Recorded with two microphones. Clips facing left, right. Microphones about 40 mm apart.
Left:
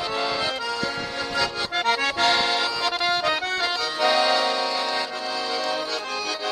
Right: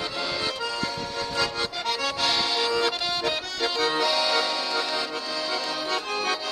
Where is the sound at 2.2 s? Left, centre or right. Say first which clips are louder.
Left 3 dB; centre.